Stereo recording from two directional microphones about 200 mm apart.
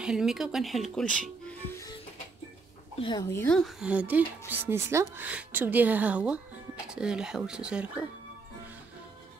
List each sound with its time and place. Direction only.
0.0 s speech: 5° right (ahead or behind)
3.0 s speech: 20° left (ahead or behind)
3.3 s speech: 10° left (ahead or behind)